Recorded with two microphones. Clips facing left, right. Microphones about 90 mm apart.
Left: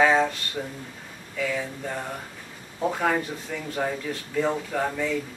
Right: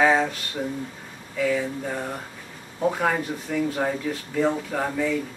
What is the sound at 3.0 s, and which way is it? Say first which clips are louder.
Speech: right 1 dB; 5° right (ahead or behind).